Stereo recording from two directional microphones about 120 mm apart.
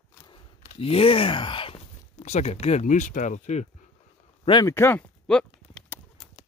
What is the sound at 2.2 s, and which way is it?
Speech, 75° left (ahead or behind).